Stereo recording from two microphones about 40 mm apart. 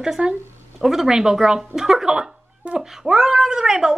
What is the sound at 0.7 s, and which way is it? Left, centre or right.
Speech, centre.